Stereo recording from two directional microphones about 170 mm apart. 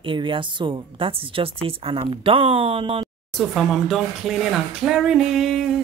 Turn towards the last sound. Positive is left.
turn(degrees=0)  # may be behind; listen again after turning